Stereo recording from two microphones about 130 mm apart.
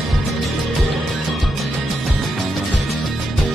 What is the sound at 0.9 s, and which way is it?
Music, centre (ahead or behind).